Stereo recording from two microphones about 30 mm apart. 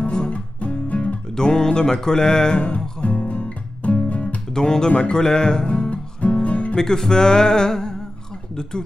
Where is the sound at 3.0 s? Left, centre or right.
Left.